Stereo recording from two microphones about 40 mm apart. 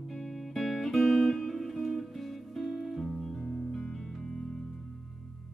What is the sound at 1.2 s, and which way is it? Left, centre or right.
Music, centre.